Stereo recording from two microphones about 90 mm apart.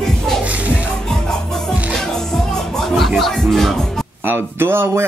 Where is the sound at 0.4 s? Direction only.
15° right (ahead or behind).